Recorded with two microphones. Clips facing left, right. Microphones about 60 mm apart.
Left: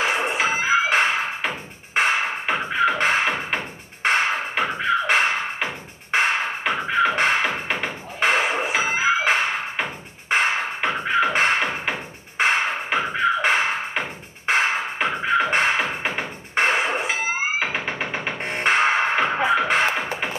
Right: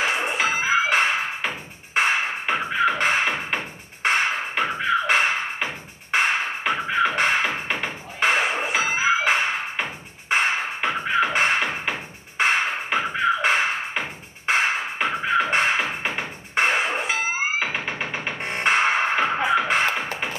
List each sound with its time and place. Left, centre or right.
0.1 s music: centre
12.9 s music: centre
19.9 s music: left